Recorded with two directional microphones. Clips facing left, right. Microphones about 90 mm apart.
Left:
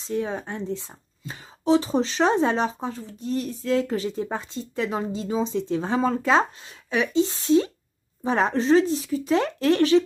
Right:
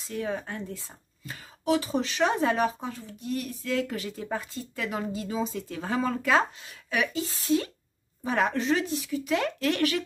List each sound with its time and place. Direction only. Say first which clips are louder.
0.0 s speech: left 4 dB; 25° left (ahead or behind)